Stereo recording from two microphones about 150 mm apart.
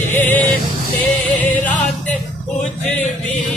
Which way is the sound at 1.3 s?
10° left (ahead or behind).